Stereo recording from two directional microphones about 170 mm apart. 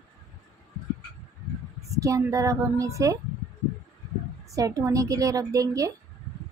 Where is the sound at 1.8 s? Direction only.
20° right (ahead or behind).